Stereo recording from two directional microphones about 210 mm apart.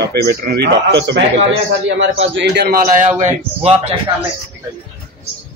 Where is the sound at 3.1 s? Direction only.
30° right (ahead or behind).